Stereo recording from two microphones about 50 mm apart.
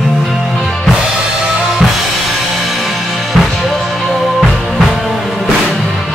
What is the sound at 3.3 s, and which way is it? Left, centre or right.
Music, centre.